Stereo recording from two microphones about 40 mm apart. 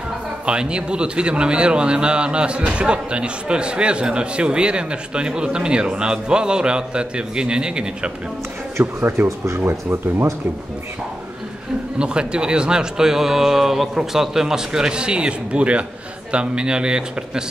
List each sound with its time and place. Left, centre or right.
0.5 s speech: right
8.7 s speech: right
12.0 s speech: right